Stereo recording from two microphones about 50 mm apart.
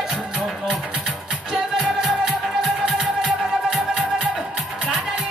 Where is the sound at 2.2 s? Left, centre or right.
Centre.